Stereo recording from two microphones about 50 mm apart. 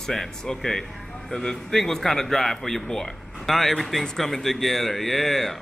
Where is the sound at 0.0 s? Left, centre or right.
Centre.